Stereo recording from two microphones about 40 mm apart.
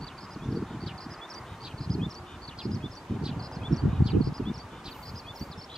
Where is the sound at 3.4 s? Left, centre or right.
Centre.